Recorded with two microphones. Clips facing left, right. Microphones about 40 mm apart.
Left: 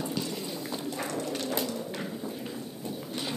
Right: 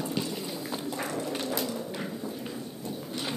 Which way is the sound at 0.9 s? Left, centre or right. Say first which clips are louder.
Right 1 dB; centre.